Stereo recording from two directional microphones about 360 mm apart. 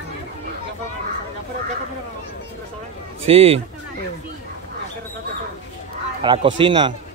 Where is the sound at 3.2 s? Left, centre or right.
Centre.